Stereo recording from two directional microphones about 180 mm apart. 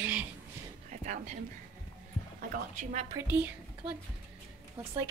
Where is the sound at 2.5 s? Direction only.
45° right (ahead or behind).